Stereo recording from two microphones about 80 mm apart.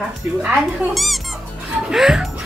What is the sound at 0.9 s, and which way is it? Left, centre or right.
A child's voice, centre.